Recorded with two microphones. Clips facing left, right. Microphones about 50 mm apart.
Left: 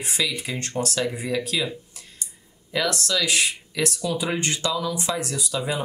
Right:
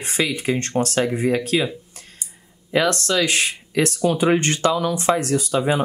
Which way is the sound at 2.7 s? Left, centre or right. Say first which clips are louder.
Right 5 dB; right.